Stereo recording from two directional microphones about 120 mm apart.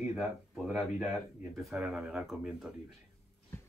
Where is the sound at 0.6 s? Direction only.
5° right (ahead or behind).